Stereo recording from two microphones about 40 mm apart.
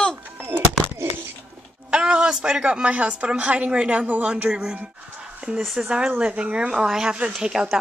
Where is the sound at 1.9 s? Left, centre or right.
Right.